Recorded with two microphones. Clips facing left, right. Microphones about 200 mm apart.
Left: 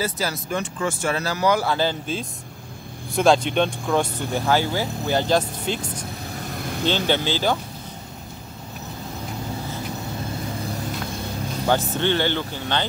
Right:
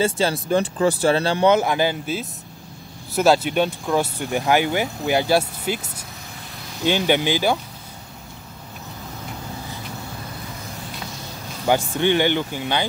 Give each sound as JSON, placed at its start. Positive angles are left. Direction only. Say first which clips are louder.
{"t": 0.0, "sound": "speech", "louder": "right 6 dB", "side_deg": -30}
{"t": 6.6, "sound": "vehicle", "louder": "even", "side_deg": 55}
{"t": 6.9, "sound": "speech", "louder": "right 4 dB", "side_deg": -15}
{"t": 11.6, "sound": "speech", "louder": "right 2 dB", "side_deg": -10}